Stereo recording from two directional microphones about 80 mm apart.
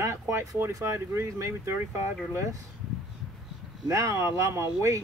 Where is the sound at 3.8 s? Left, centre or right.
Right.